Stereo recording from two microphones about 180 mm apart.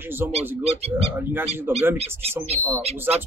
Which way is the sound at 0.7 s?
35° right (ahead or behind).